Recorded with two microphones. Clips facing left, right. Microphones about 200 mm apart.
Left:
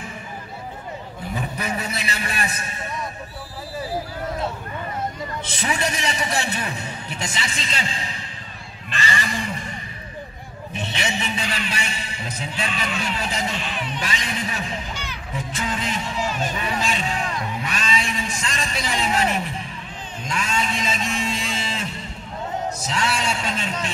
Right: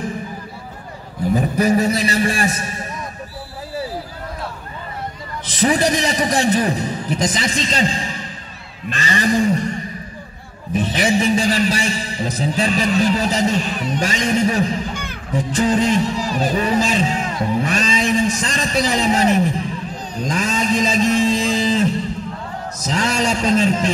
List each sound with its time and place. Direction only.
1.3 s a man's voice: 40° right (ahead or behind)
5.6 s a man's voice: 35° right (ahead or behind)